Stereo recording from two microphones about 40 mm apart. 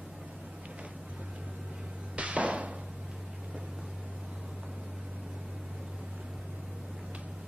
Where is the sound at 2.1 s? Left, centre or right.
Right.